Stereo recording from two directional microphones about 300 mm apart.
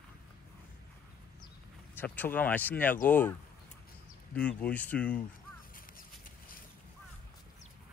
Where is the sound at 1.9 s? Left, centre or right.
Centre.